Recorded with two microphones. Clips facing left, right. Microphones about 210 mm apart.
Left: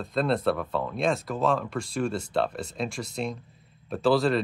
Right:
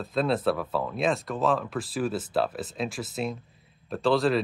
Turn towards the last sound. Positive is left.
turn(degrees=0)  # may be behind; listen again after turning